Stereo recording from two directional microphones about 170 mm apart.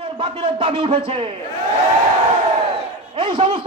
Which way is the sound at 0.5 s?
30° right (ahead or behind).